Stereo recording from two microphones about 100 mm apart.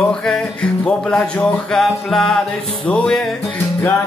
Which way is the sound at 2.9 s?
10° left (ahead or behind).